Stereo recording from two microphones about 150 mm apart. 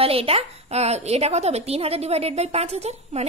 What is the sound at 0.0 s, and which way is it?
A woman's voice, 40° right (ahead or behind).